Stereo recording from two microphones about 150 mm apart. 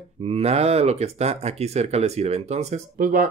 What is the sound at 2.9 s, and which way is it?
Speech, 70° right (ahead or behind).